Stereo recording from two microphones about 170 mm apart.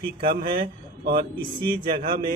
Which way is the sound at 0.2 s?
60° right (ahead or behind).